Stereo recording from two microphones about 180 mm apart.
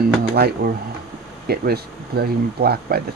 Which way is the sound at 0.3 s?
55° right (ahead or behind).